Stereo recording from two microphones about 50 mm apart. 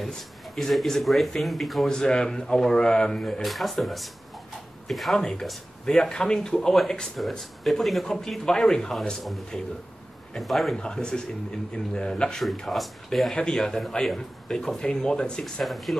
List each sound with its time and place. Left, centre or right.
0.6 s speech: centre
1.9 s speech: centre
5.1 s speech: centre
10.4 s speech: centre
10.8 s speech: centre
12.6 s speech: centre
15.6 s speech: centre